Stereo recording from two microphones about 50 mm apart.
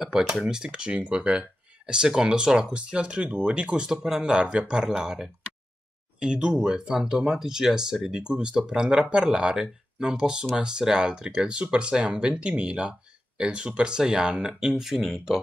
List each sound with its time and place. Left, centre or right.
0.0 s speech: centre